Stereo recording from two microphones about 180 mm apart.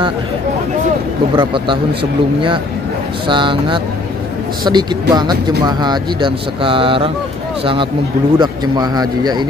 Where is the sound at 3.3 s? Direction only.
25° right (ahead or behind).